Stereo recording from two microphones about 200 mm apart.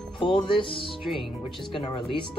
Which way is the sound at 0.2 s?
25° left (ahead or behind).